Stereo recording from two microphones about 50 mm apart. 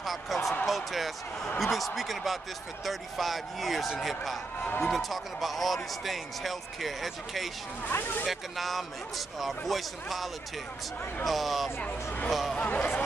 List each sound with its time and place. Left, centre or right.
0.0 s a sound: centre
0.7 s speech: centre
7.9 s speech: left
8.3 s speech: centre
12.5 s speech: left